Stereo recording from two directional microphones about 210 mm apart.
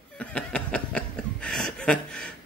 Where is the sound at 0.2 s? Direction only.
5° left (ahead or behind).